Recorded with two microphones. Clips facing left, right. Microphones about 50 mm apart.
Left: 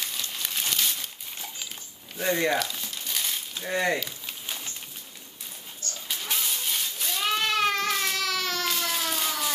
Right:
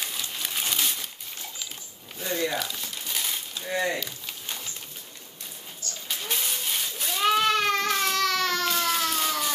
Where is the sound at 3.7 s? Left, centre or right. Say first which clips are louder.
Left 1 dB; left.